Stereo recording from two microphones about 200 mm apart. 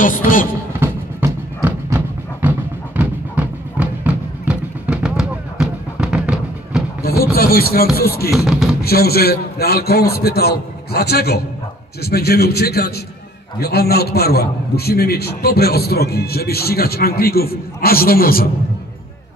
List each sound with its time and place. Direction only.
0.0 s speech: 40° left (ahead or behind)
0.7 s music: 10° right (ahead or behind)
7.0 s a sound: 50° left (ahead or behind)
7.3 s speech: 50° left (ahead or behind)
8.3 s music: centre (ahead or behind)
8.8 s a man's voice: 50° left (ahead or behind)